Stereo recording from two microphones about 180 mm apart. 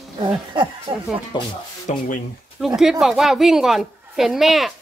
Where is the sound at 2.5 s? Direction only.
Centre (ahead or behind).